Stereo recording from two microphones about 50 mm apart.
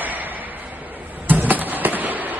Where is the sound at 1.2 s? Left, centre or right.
Right.